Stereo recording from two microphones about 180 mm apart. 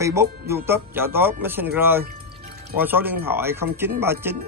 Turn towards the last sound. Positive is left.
turn(degrees=-15)  # may be behind; listen again after turning